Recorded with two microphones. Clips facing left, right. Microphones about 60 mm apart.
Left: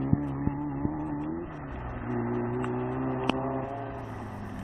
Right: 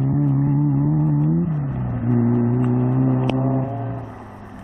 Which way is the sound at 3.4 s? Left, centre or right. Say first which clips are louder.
Right 9 dB; centre.